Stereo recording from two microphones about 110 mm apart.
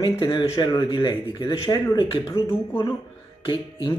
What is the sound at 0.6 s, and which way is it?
Speech, 45° left (ahead or behind).